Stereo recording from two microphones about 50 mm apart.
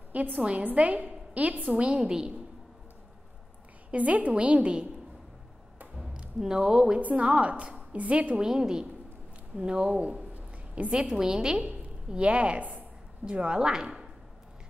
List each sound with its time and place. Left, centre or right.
0.1 s a woman's voice: right; by 2.3 s centre
3.9 s a woman's voice: right
6.1 s speech: centre
7.0 s a woman's voice: right
8.4 s a woman's voice: centre
10.9 s a woman's voice: centre
11.6 s a woman's voice: right